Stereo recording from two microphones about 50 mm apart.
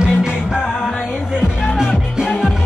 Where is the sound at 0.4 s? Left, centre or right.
Centre.